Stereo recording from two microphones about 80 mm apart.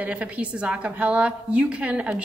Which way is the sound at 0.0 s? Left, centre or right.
Centre.